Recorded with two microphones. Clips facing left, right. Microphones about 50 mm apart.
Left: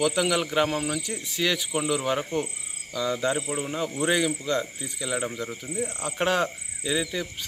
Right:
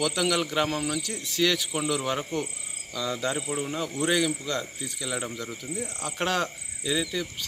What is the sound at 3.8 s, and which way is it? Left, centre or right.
Speech, centre.